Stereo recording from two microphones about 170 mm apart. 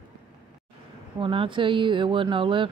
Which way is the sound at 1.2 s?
30° right (ahead or behind).